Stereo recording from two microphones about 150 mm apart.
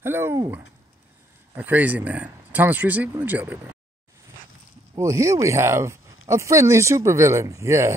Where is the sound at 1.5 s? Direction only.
10° right (ahead or behind).